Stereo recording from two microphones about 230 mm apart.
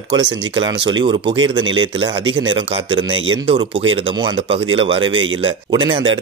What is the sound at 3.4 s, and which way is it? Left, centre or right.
Speech, right.